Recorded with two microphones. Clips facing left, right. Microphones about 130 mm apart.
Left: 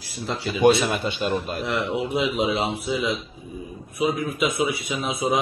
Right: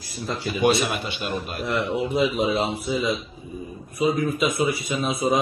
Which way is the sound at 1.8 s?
15° left (ahead or behind).